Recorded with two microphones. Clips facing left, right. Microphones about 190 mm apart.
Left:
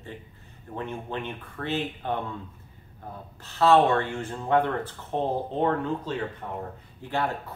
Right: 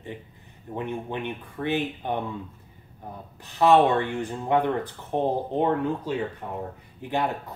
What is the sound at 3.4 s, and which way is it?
Speech, 15° right (ahead or behind).